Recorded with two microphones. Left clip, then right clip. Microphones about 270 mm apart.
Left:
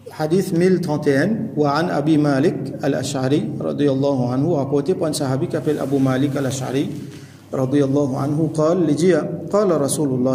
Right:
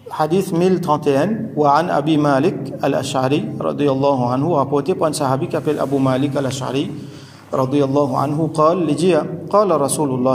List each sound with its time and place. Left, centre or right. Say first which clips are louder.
0.2 s a man's voice: right 1 dB; centre